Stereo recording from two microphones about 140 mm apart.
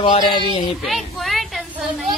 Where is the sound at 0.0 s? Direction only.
35° left (ahead or behind).